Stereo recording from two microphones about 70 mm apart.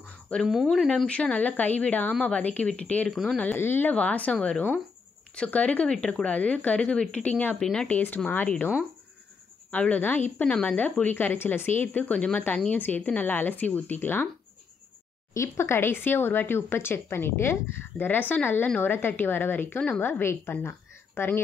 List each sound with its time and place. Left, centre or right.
0.5 s speech: centre
0.8 s speech: centre
3.1 s speech: centre
3.5 s speech: left
7.5 s speech: centre
7.9 s speech: left
9.7 s speech: left
10.4 s speech: centre
10.8 s speech: left
15.3 s a woman's voice: left